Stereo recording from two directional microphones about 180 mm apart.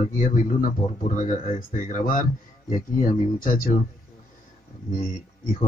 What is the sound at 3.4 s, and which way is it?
Speech, 50° left (ahead or behind).